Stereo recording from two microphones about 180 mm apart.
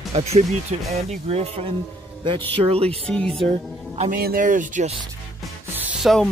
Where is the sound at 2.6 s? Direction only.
35° right (ahead or behind).